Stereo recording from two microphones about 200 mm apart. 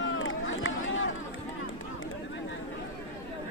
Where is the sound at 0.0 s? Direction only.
80° left.